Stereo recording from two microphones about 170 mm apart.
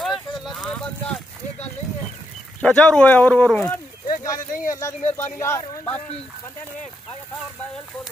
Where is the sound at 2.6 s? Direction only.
5° left (ahead or behind).